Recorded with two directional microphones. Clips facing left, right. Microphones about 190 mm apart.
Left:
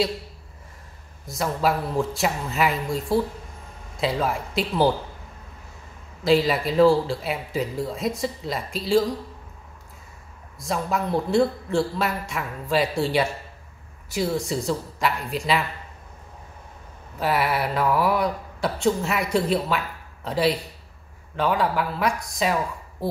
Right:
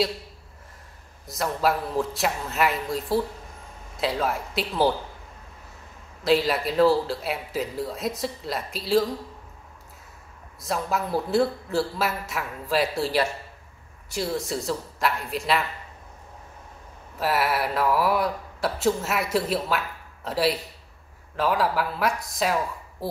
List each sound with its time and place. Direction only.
1.2 s speech: centre (ahead or behind)
6.2 s speech: centre (ahead or behind)
10.6 s speech: centre (ahead or behind)
17.2 s speech: centre (ahead or behind)